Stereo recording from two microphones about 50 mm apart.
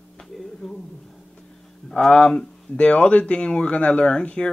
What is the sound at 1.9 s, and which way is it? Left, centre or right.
Speech, left.